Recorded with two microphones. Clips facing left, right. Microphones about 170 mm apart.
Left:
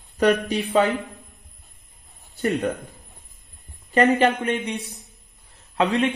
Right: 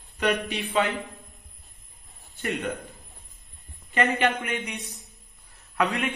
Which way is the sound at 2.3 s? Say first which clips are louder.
Left 7 dB; 35° left (ahead or behind).